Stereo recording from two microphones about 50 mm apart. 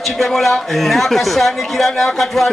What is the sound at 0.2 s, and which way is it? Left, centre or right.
A man's voice, centre.